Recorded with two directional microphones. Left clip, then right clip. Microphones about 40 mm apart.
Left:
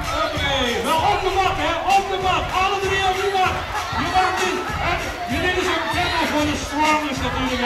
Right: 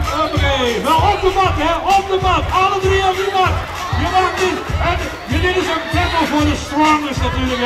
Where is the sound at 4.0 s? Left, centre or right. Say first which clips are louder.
Right 4 dB; right.